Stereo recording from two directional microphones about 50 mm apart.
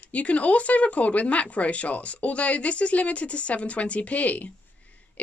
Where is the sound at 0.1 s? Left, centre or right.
Left.